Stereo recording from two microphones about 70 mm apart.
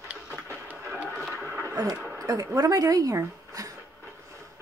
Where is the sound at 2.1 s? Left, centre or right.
Right.